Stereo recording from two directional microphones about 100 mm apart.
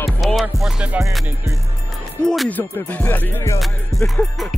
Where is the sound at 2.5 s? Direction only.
15° left (ahead or behind).